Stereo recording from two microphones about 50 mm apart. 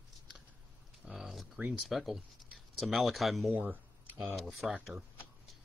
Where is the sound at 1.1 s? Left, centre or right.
Centre.